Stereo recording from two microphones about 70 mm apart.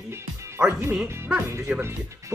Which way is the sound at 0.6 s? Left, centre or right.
Centre.